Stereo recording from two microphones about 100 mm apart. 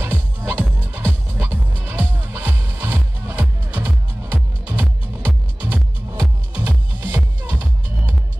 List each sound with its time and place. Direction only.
0.0 s music: 20° right (ahead or behind)